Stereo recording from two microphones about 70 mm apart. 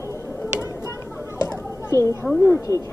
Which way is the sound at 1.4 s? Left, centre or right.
Left.